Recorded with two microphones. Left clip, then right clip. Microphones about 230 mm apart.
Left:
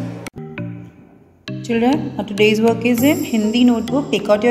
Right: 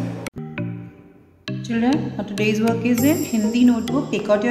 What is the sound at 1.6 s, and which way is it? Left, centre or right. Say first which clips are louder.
A woman's voice: left 4 dB; left.